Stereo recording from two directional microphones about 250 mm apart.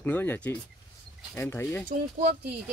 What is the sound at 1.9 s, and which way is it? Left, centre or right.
Speech, right.